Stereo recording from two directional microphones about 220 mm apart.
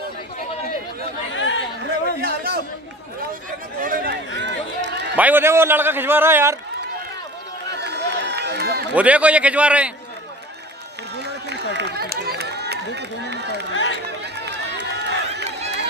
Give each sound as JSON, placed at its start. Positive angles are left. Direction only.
{"t": 1.3, "sound": "chatter", "side_deg": 60}
{"t": 2.2, "sound": "a sound", "side_deg": -45}
{"t": 3.8, "sound": "a sound", "side_deg": -40}
{"t": 4.4, "sound": "run", "side_deg": -55}
{"t": 5.1, "sound": "a man's voice", "side_deg": -10}
{"t": 7.7, "sound": "run", "side_deg": -50}
{"t": 8.9, "sound": "a man's voice", "side_deg": -5}
{"t": 11.1, "sound": "run", "side_deg": -50}